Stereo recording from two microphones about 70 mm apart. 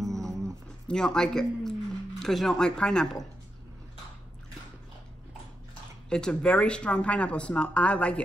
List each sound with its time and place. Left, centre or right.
0.8 s speech: centre
6.0 s speech: centre